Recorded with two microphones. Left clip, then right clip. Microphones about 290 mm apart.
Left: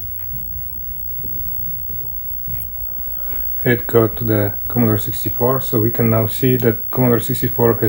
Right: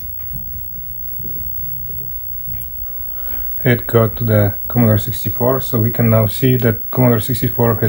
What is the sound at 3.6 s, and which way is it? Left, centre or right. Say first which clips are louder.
Speech: even; right.